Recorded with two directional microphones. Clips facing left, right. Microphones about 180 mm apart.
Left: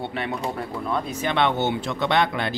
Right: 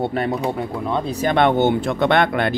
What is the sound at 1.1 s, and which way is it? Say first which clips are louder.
Speech: right 7 dB; 45° right (ahead or behind).